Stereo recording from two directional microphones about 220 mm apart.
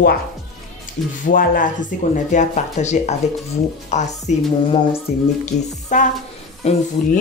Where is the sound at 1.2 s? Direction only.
40° left (ahead or behind).